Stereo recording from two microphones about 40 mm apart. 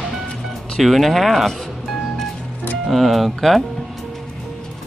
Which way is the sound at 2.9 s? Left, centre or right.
Centre.